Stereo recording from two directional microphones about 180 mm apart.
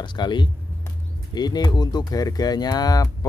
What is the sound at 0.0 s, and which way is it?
Speech, 25° left (ahead or behind).